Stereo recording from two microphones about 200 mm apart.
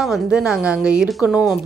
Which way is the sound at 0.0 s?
5° right (ahead or behind).